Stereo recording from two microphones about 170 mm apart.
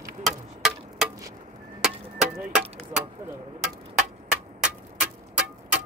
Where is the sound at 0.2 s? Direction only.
Centre (ahead or behind).